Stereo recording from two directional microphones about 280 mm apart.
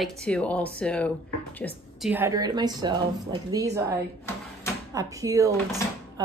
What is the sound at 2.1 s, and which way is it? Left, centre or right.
Speech, centre.